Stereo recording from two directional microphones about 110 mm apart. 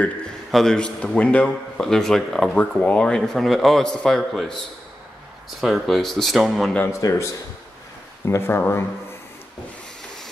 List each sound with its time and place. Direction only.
0.5 s a man's voice: 5° left (ahead or behind)
5.6 s a man's voice: centre (ahead or behind)
6.9 s speech: 25° left (ahead or behind)